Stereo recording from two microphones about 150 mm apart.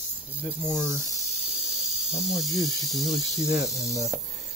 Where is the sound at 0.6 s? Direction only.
Centre (ahead or behind).